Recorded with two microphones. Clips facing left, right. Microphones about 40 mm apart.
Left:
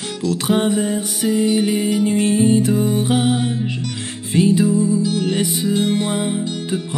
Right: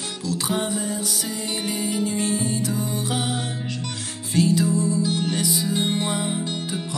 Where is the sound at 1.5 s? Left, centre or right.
Centre.